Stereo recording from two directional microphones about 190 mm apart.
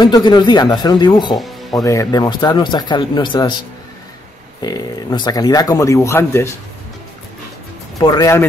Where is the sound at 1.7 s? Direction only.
20° left (ahead or behind).